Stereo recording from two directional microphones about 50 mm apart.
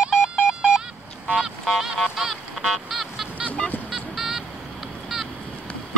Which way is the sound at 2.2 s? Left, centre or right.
Centre.